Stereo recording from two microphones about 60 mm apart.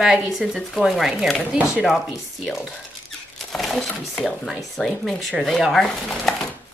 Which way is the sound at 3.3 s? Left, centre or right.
Centre.